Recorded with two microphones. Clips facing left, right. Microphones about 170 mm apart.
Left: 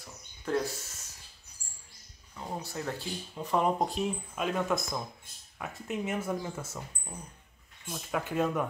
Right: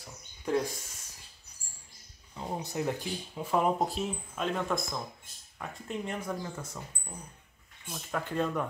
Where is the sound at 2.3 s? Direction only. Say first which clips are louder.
Right 3 dB; 20° right (ahead or behind).